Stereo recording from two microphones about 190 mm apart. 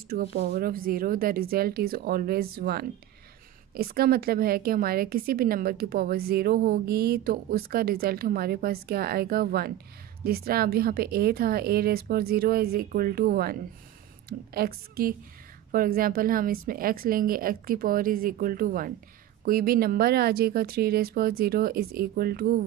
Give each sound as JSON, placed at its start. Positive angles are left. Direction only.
{"t": 0.1, "sound": "a woman's voice", "side_deg": -50}